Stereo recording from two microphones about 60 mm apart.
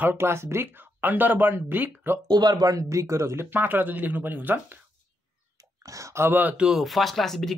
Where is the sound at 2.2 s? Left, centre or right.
Right.